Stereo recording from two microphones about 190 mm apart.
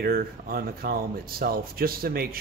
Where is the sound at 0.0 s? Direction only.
50° right (ahead or behind).